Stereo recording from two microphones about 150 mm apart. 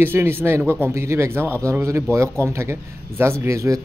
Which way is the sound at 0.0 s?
15° right (ahead or behind).